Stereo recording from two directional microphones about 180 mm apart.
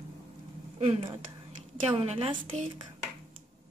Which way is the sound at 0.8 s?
35° right (ahead or behind).